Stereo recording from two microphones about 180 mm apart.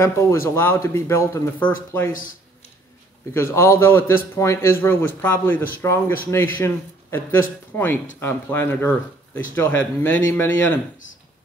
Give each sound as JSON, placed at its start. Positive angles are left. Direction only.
{"t": 0.0, "sound": "a man's voice", "side_deg": 15}
{"t": 3.3, "sound": "a man's voice", "side_deg": 15}